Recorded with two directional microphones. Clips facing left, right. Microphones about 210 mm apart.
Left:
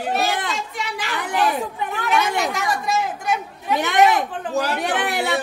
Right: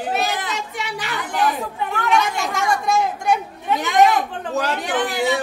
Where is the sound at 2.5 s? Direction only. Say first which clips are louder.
Right 3 dB; centre (ahead or behind).